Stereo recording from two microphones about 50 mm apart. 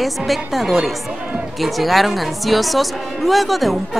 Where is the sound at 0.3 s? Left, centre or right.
Centre.